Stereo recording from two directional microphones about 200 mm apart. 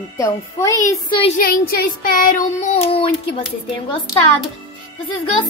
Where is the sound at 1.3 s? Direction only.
50° left (ahead or behind); by 3.4 s 30° left (ahead or behind).